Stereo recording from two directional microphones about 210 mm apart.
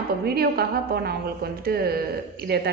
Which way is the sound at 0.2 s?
50° right (ahead or behind).